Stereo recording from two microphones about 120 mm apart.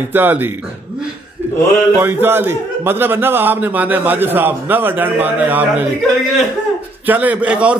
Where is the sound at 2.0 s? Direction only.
20° right (ahead or behind).